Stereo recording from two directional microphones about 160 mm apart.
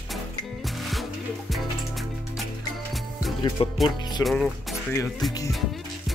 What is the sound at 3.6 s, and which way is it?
Speech, 35° left (ahead or behind).